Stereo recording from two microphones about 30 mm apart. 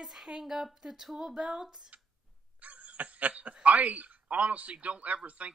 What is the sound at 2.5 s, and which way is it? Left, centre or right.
Snicker, right.